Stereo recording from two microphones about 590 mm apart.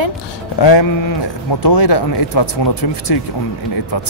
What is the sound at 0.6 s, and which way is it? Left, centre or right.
Speech, left.